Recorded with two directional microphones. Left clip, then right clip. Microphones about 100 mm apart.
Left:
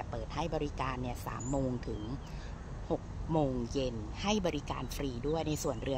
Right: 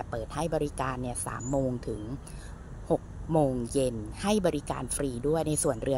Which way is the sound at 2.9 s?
30° right (ahead or behind).